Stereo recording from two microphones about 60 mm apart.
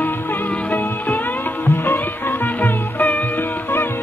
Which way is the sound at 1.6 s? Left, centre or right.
Left.